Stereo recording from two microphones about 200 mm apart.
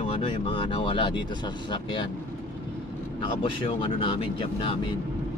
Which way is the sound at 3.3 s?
25° left (ahead or behind).